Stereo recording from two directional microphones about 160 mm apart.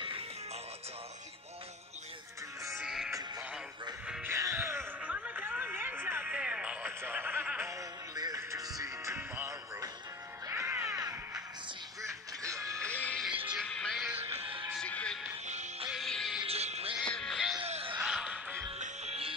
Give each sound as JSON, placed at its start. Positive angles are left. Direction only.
{"t": 2.8, "sound": "music", "side_deg": -5}
{"t": 4.1, "sound": "music", "side_deg": -15}
{"t": 8.1, "sound": "music", "side_deg": -25}
{"t": 12.7, "sound": "music", "side_deg": 10}
{"t": 14.3, "sound": "music", "side_deg": -35}
{"t": 14.7, "sound": "music", "side_deg": 5}
{"t": 15.4, "sound": "music", "side_deg": -45}
{"t": 15.9, "sound": "music", "side_deg": 0}
{"t": 16.4, "sound": "music", "side_deg": -40}
{"t": 17.1, "sound": "music", "side_deg": 5}
{"t": 17.6, "sound": "a sound", "side_deg": -35}
{"t": 18.0, "sound": "music", "side_deg": -5}
{"t": 18.8, "sound": "music", "side_deg": -40}